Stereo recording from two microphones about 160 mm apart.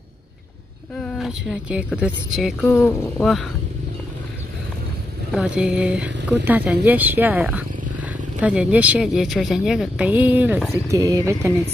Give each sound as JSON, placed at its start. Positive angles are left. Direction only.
{"t": 0.9, "sound": "speech", "side_deg": 5}
{"t": 2.6, "sound": "speech", "side_deg": 15}
{"t": 5.3, "sound": "speech", "side_deg": -5}